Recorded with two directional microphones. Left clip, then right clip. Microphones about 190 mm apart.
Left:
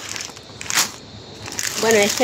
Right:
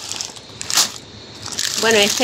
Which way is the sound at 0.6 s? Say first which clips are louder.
Right 1 dB; 15° left (ahead or behind).